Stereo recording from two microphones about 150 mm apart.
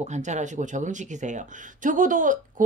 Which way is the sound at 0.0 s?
50° right (ahead or behind).